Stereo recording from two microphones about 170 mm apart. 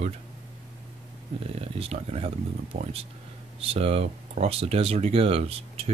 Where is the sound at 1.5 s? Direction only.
35° right (ahead or behind).